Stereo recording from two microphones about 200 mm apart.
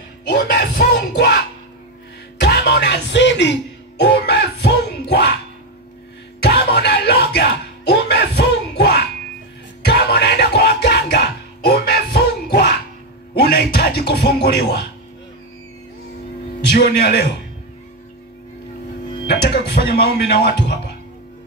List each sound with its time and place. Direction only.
0.3 s music: 55° left (ahead or behind)
2.4 s music: 55° left (ahead or behind)
6.4 s music: 55° left (ahead or behind)
13.3 s a man's voice: 50° left (ahead or behind)
16.7 s a man's voice: 50° left (ahead or behind)
19.2 s speech: 55° left (ahead or behind)